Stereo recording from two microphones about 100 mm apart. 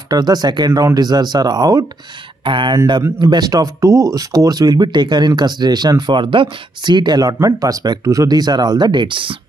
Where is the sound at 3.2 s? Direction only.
45° right (ahead or behind).